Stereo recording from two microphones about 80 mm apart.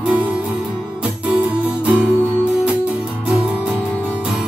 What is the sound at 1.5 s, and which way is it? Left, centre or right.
Music, centre.